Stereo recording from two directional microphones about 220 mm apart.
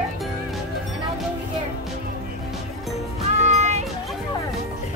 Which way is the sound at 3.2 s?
30° right (ahead or behind).